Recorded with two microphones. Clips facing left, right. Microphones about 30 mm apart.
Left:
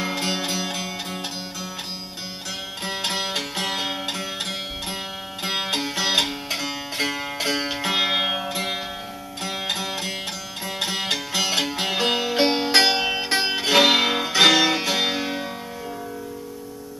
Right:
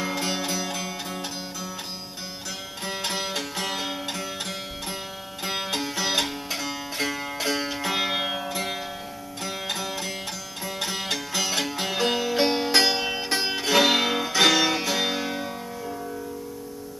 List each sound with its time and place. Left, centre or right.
0.0 s music: left
2.8 s music: left